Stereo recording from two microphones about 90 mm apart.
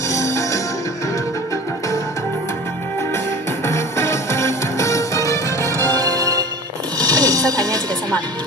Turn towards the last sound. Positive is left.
turn(degrees=-45)  # may be behind; listen again after turning